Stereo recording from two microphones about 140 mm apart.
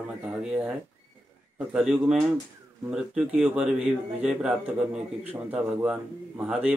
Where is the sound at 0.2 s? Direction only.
5° right (ahead or behind).